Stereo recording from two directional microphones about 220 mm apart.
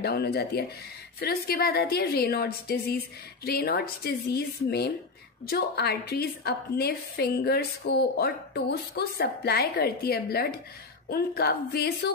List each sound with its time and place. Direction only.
0.0 s a woman's voice: 45° left (ahead or behind)